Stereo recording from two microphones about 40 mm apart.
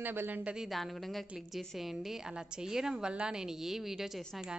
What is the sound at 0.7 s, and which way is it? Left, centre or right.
A woman's voice, centre.